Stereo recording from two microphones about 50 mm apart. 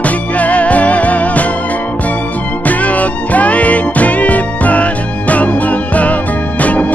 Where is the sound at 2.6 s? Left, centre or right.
Left.